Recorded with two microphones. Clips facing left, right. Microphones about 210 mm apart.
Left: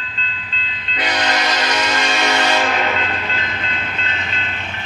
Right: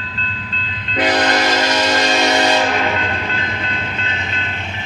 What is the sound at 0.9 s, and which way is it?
Train, 50° right (ahead or behind).